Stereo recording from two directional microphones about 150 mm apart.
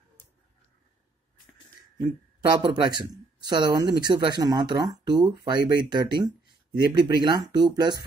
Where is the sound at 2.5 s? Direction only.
30° right (ahead or behind).